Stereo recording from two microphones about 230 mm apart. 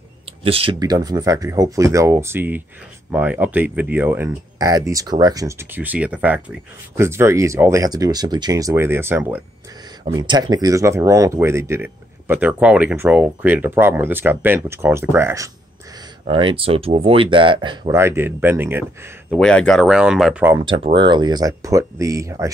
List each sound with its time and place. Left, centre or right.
0.4 s speech: right
16.3 s speech: right
19.3 s speech: centre
20.6 s speech: right